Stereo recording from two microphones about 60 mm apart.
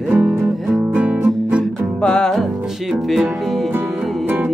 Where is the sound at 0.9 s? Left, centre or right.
Right.